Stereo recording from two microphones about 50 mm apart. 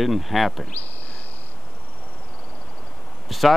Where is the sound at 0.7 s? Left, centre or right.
Left.